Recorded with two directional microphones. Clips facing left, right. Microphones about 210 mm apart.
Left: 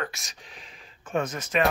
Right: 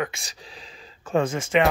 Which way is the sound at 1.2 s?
25° right (ahead or behind).